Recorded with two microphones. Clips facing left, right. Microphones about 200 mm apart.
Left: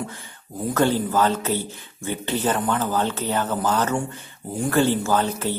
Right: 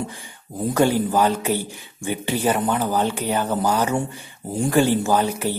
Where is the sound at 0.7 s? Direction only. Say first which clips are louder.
Right 2 dB; 10° right (ahead or behind).